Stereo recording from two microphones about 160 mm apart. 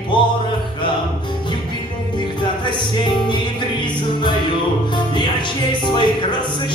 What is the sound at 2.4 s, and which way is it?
Music, 30° left (ahead or behind).